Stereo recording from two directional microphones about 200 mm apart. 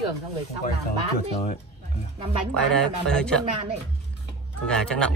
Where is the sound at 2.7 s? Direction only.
5° left (ahead or behind).